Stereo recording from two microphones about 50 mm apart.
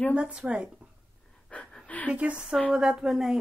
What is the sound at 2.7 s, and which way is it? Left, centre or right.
Speech, centre.